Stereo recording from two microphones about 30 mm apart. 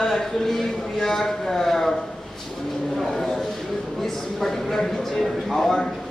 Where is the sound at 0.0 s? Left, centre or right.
Centre.